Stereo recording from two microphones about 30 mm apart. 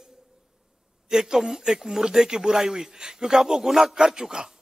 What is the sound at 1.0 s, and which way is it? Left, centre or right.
A man's voice, right.